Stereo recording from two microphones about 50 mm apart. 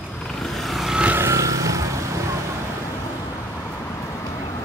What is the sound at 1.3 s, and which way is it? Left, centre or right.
Vehicle, right.